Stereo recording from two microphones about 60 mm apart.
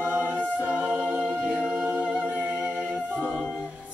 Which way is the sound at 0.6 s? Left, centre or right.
Right.